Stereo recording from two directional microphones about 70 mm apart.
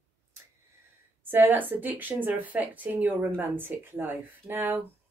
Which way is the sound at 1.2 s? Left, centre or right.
Right.